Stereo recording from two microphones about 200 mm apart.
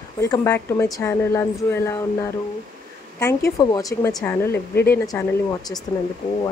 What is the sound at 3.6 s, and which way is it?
Speech, 20° left (ahead or behind).